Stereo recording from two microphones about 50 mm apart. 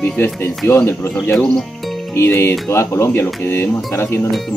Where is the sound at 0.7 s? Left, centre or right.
Left.